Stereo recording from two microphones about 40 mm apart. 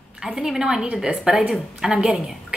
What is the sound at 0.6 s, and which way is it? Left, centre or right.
A woman's voice, centre.